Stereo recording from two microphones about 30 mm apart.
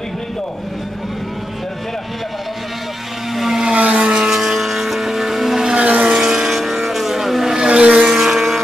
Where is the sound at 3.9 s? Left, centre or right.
Right.